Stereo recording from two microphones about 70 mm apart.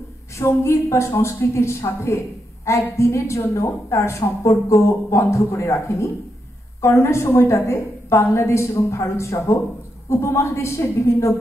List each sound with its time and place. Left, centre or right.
0.4 s a woman's voice: left